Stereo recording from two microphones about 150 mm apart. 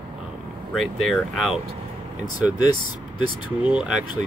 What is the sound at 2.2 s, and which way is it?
Speech, 30° left (ahead or behind).